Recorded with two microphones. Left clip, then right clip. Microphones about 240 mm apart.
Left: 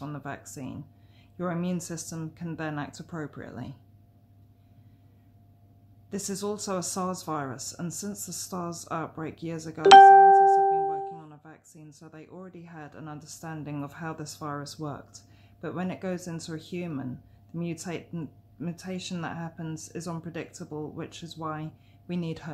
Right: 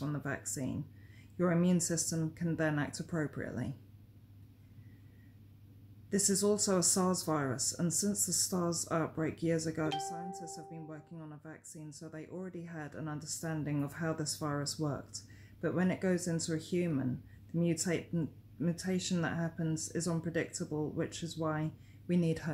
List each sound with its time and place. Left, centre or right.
0.0 s speech: centre
6.0 s speech: centre